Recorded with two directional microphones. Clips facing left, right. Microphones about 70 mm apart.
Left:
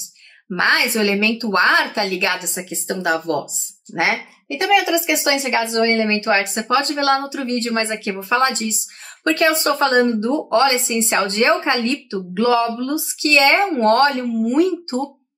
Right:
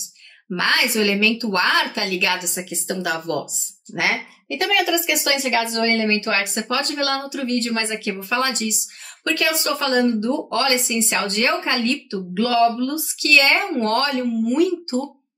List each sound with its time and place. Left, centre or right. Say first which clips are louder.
0.5 s speech: left 3 dB; left